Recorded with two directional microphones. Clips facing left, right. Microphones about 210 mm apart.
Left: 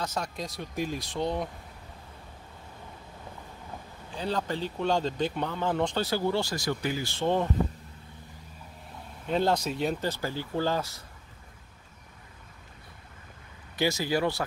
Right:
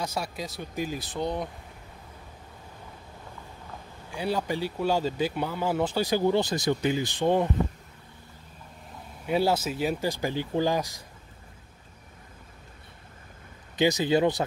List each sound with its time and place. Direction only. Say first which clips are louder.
0.0 s speech: right 1 dB; 10° right (ahead or behind)
4.1 s speech: right 2 dB; 10° right (ahead or behind)
9.2 s speech: right 1 dB; 10° right (ahead or behind)
13.7 s speech: right 4 dB; 20° right (ahead or behind)